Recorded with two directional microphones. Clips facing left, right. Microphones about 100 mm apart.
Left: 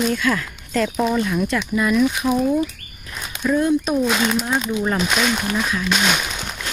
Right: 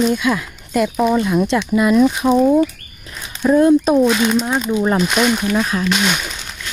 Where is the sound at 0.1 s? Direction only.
15° right (ahead or behind).